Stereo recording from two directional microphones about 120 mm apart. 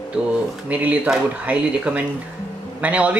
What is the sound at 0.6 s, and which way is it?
A man's voice, 15° right (ahead or behind).